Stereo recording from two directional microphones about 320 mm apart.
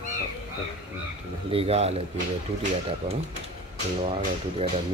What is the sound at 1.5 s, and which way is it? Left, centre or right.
Speech, centre.